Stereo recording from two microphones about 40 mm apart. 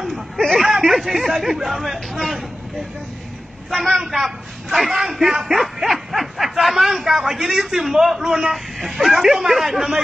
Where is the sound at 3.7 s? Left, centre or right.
Centre.